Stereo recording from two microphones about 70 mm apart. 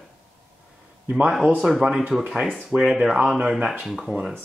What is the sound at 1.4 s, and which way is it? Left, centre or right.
Speech, centre.